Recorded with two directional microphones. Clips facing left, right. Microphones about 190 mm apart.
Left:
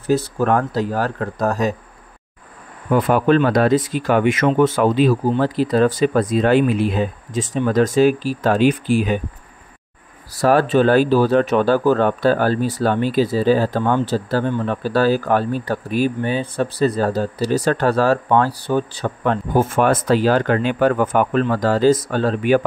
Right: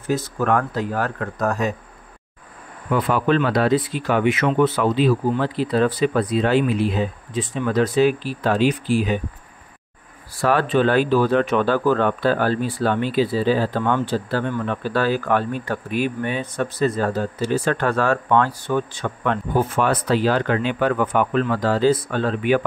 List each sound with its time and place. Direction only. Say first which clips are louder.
0.0 s speech: left 4 dB; 35° left (ahead or behind)
2.9 s speech: left 4 dB; 50° left (ahead or behind)
10.4 s speech: left 4 dB; 40° left (ahead or behind)